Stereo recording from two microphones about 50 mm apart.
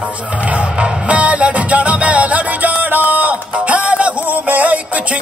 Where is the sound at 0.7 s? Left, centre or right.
Right.